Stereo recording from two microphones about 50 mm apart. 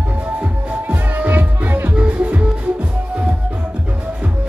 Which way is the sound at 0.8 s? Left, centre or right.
Right.